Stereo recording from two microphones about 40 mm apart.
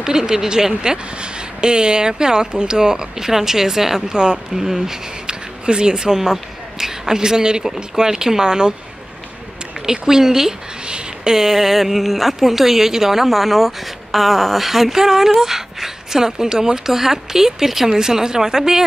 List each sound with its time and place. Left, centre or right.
0.0 s speech: centre
4.1 s speech: right
9.8 s speech: centre
10.9 s a sound: right
11.3 s speech: centre